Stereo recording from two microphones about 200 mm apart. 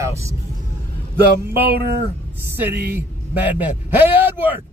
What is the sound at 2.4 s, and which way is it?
A man's voice, 10° right (ahead or behind).